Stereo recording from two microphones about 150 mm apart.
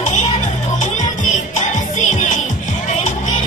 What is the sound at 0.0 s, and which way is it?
Music, 50° left (ahead or behind).